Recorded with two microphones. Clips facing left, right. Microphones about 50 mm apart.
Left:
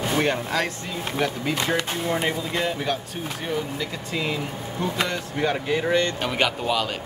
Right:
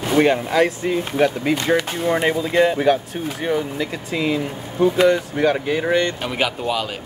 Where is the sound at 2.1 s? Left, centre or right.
Centre.